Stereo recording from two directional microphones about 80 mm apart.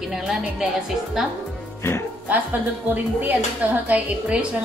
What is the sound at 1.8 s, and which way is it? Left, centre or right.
Speech, left.